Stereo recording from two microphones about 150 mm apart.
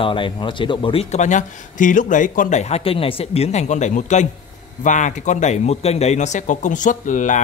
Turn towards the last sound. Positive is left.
turn(degrees=55)  # may be behind; listen again after turning